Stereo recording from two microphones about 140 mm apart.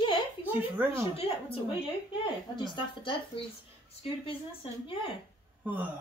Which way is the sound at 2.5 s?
35° left (ahead or behind).